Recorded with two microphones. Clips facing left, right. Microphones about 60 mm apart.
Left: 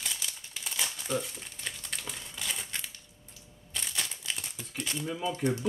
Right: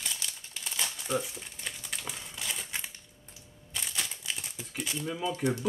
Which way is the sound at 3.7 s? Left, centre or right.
Centre.